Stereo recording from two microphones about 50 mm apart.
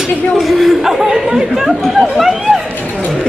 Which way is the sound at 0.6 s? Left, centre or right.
Centre.